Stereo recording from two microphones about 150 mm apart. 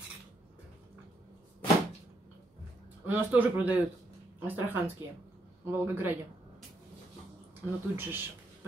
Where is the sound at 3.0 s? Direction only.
10° right (ahead or behind).